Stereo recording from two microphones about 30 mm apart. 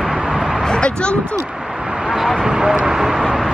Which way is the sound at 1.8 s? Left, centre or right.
Right.